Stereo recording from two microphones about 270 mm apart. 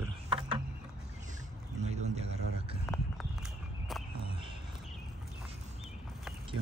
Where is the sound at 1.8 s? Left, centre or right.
Right.